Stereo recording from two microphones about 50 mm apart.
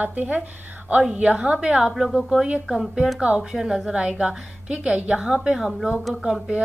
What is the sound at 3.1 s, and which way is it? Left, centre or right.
Speech, right.